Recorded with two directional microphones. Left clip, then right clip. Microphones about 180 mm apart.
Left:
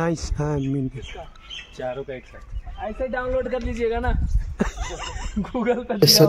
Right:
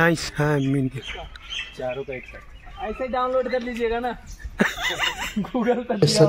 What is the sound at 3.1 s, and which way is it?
A man's voice, 30° left (ahead or behind).